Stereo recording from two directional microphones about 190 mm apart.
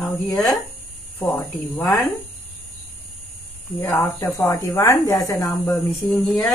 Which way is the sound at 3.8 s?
10° left (ahead or behind).